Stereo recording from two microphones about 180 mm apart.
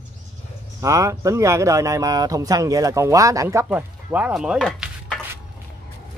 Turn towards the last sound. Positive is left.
turn(degrees=5)  # may be behind; listen again after turning